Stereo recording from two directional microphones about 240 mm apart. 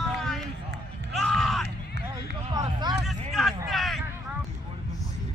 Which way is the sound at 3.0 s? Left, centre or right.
Centre.